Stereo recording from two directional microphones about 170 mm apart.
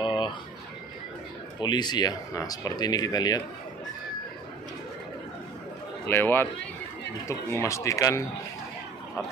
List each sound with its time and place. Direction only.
0.0 s bird: 30° left (ahead or behind)
1.6 s speech: 25° left (ahead or behind)
6.0 s speech: 15° left (ahead or behind)